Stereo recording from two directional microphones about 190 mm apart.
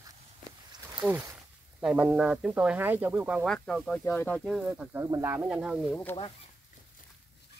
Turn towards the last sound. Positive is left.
turn(degrees=10)  # may be behind; listen again after turning